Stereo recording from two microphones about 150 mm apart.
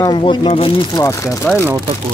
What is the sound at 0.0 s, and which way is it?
Speech, 30° left (ahead or behind).